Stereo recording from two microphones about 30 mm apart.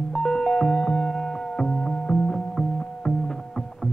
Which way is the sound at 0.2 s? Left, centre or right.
Left.